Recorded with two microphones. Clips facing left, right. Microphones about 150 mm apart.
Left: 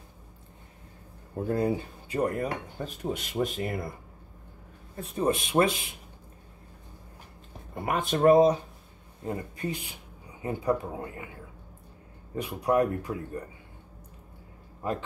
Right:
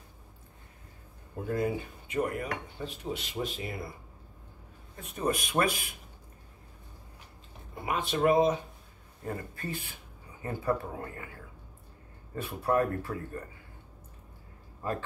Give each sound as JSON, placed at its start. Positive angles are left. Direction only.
{"t": 1.5, "sound": "speech", "side_deg": 35}
{"t": 4.9, "sound": "speech", "side_deg": 30}
{"t": 7.7, "sound": "speech", "side_deg": 50}
{"t": 9.2, "sound": "speech", "side_deg": 20}
{"t": 12.4, "sound": "speech", "side_deg": 15}
{"t": 14.8, "sound": "a man's voice", "side_deg": 20}